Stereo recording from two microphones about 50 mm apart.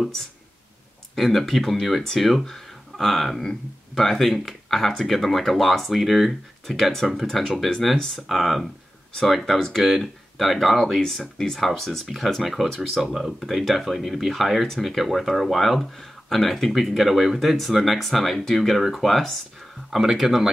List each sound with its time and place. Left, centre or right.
1.1 s speech: centre